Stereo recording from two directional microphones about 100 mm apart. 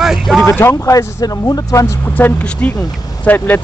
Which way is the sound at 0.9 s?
35° left (ahead or behind).